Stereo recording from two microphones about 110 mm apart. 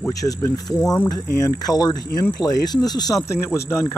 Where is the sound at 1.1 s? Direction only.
35° left (ahead or behind).